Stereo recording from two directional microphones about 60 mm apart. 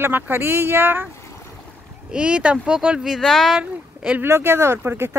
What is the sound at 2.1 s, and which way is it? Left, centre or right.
Speech, centre.